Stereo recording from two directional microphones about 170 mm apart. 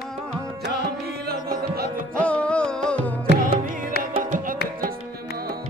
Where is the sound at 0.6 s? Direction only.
65° right (ahead or behind).